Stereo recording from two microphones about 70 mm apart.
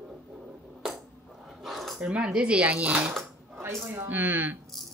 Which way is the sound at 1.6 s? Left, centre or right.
Centre.